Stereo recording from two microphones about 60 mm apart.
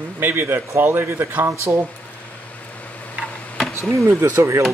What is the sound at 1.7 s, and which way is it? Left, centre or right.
Speech, right.